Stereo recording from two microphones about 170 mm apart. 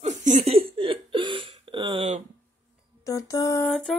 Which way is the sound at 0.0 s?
45° right (ahead or behind).